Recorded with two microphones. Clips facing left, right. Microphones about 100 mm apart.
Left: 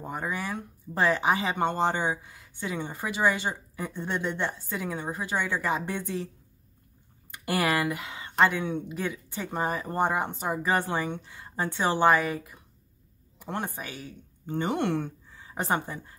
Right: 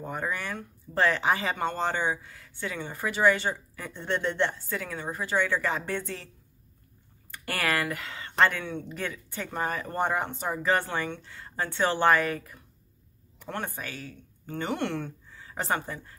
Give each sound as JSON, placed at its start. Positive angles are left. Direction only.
{"t": 0.0, "sound": "a woman's voice", "side_deg": 15}